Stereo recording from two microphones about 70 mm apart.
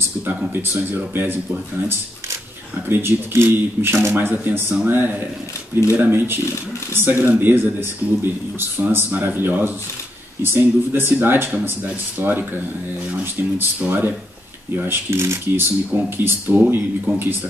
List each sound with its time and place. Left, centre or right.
0.6 s speech: right
2.9 s speech: right
14.9 s speech: right
15.9 s speech: right